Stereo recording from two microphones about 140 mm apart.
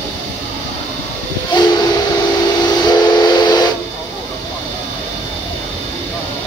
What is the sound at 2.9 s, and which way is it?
Steam whistle, 30° left (ahead or behind).